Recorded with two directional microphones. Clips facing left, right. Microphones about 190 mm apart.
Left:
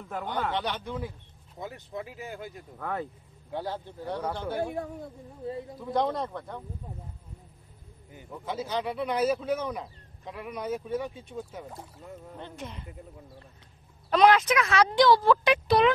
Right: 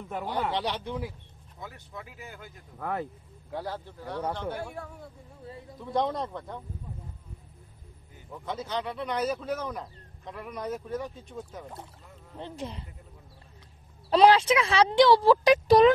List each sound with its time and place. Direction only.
0.1 s speech: 5° right (ahead or behind)
0.6 s speech: 30° right (ahead or behind)
1.6 s speech: 25° left (ahead or behind)
2.8 s speech: 10° right (ahead or behind)
3.5 s speech: 25° left (ahead or behind)
4.3 s speech: 5° left (ahead or behind)
4.6 s speech: 20° left (ahead or behind)
5.9 s speech: centre (ahead or behind)
8.3 s speech: 5° left (ahead or behind)
12.4 s speech: 30° right (ahead or behind)
14.1 s speech: 30° right (ahead or behind)